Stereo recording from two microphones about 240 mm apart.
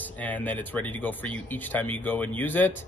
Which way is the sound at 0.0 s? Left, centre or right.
Centre.